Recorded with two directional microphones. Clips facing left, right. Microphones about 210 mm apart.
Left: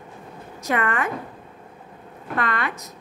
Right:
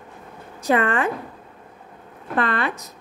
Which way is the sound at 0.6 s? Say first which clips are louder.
Right 4 dB; 30° right (ahead or behind).